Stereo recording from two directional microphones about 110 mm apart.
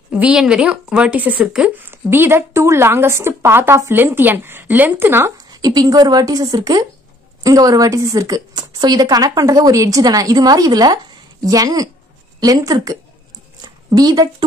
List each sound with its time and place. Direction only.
0.1 s a woman's voice: 10° right (ahead or behind)
1.9 s a woman's voice: 20° right (ahead or behind)
5.5 s a woman's voice: 35° right (ahead or behind)
13.6 s a sound: 35° right (ahead or behind)